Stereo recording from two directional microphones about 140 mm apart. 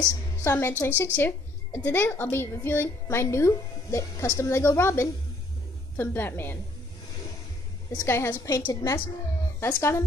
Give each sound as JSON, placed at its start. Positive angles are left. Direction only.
{"t": 0.0, "sound": "a woman's voice", "side_deg": 25}
{"t": 8.0, "sound": "a woman's voice", "side_deg": 20}